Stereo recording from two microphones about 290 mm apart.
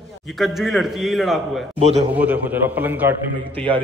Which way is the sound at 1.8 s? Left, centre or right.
Right.